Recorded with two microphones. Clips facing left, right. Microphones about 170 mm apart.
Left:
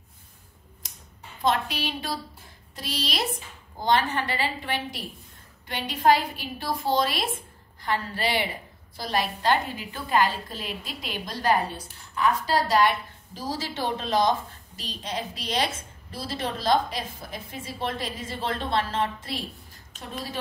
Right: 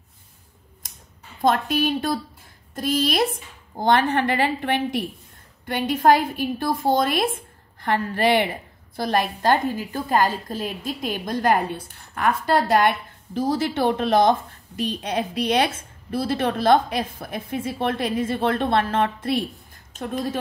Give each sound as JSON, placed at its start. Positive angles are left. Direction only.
{"t": 1.4, "sound": "a woman's voice", "side_deg": -50}